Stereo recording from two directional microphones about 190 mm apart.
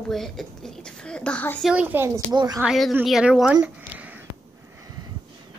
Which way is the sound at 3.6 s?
10° right (ahead or behind).